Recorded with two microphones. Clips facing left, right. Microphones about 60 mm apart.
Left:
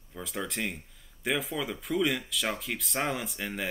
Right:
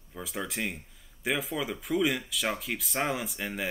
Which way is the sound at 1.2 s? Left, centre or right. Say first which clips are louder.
Even; centre.